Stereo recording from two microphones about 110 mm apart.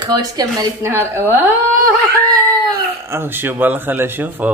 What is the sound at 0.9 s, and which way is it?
Speech, 20° right (ahead or behind).